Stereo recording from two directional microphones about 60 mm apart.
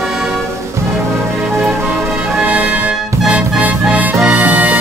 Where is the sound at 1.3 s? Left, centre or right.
Centre.